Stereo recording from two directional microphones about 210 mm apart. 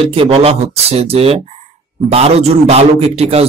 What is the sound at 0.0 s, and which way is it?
A man's voice, 25° right (ahead or behind).